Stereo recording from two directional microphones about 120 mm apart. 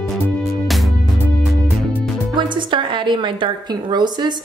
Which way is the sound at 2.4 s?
40° right (ahead or behind).